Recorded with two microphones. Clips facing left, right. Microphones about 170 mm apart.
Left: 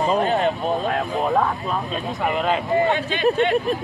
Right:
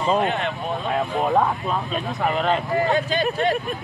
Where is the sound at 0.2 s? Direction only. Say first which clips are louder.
Left 3 dB; 40° left (ahead or behind).